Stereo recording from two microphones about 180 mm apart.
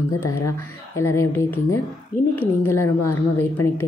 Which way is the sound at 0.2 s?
15° left (ahead or behind).